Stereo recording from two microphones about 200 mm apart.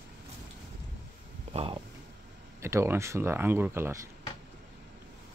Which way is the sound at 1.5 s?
30° right (ahead or behind).